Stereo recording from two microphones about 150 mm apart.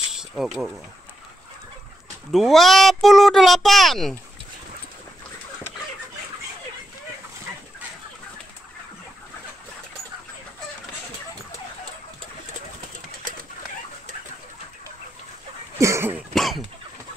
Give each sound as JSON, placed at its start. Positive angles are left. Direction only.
{"t": 0.1, "sound": "speech", "side_deg": -5}
{"t": 2.3, "sound": "speech", "side_deg": 0}
{"t": 15.8, "sound": "cough", "side_deg": -15}
{"t": 16.3, "sound": "cough", "side_deg": 0}